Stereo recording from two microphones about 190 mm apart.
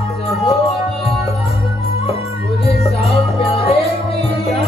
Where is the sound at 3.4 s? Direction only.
30° left (ahead or behind).